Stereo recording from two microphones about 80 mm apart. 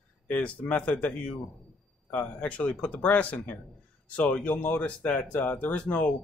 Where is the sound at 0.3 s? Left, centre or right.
Centre.